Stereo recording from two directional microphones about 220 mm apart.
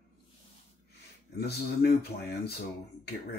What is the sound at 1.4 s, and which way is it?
Speech, 45° left (ahead or behind).